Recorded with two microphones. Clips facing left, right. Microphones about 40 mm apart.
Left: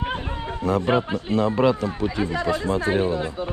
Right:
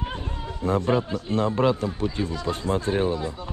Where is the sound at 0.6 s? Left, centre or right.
Left.